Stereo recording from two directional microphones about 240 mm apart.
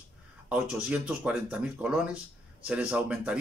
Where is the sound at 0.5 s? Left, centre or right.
Centre.